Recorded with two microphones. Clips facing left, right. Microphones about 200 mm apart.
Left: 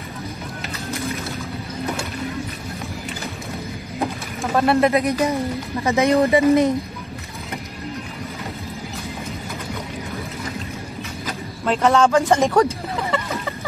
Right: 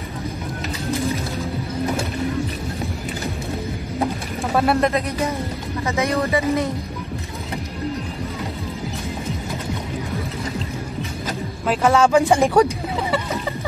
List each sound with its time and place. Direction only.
4.6 s speech: centre (ahead or behind)
5.9 s speech: 20° left (ahead or behind)
11.6 s speech: centre (ahead or behind)
12.4 s a sound: 10° right (ahead or behind)